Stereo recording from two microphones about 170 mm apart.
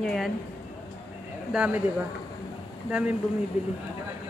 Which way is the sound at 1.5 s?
5° right (ahead or behind).